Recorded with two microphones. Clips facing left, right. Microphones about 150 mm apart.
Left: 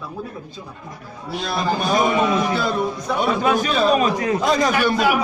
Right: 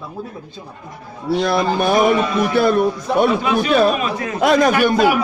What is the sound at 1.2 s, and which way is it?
A man's voice, 65° right (ahead or behind).